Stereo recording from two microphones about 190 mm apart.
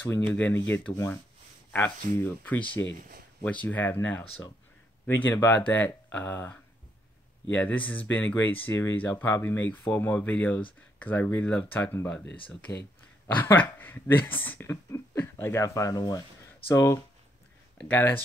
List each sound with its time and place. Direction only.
0.3 s speech: 10° left (ahead or behind)
13.3 s speech: 10° left (ahead or behind)